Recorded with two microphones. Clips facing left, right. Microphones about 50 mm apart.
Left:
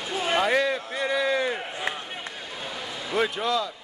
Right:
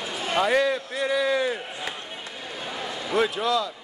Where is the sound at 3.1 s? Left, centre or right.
Centre.